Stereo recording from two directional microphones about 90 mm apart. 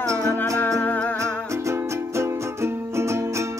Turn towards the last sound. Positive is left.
turn(degrees=-30)  # may be behind; listen again after turning